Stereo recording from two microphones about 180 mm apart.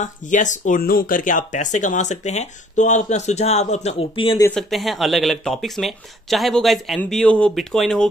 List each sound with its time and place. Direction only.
0.0 s speech: 45° left (ahead or behind)
4.6 s speech: centre (ahead or behind)